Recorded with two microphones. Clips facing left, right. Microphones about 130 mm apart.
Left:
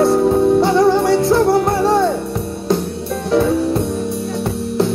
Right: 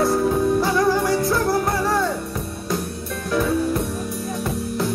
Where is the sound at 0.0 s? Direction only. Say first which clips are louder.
Left 6 dB; 25° left (ahead or behind).